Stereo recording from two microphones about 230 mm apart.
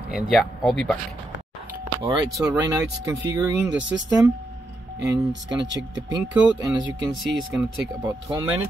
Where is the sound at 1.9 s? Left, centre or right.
Centre.